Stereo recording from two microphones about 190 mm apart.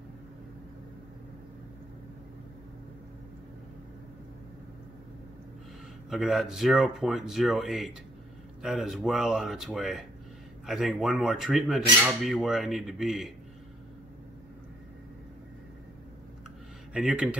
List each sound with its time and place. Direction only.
6.0 s speech: centre (ahead or behind)
16.9 s speech: 5° right (ahead or behind)